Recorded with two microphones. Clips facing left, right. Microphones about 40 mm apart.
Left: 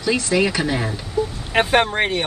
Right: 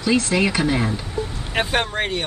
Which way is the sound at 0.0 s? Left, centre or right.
Centre.